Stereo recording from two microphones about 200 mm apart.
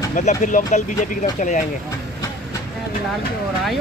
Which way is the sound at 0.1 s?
40° left (ahead or behind).